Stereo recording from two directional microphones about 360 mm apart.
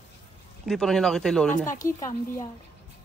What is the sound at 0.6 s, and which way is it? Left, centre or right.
Speech, centre.